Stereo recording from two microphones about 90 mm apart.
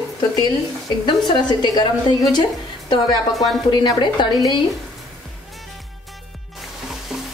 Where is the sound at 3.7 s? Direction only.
55° left (ahead or behind).